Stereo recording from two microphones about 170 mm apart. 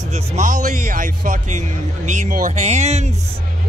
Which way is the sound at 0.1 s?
45° right (ahead or behind).